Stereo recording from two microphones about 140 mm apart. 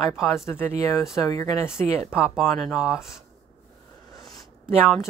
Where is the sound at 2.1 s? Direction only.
Centre (ahead or behind).